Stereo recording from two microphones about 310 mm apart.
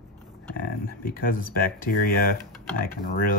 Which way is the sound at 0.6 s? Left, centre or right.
Left.